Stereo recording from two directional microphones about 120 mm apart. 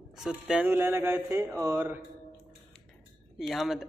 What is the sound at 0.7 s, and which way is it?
Speech, 20° right (ahead or behind).